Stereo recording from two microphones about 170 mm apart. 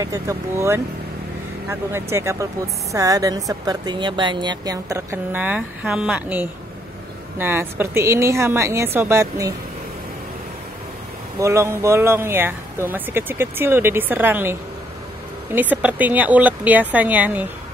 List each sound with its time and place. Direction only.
0.0 s a woman's voice: 20° right (ahead or behind)
11.3 s speech: 15° right (ahead or behind)